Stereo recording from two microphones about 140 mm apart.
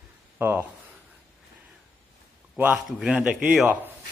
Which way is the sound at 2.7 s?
5° right (ahead or behind).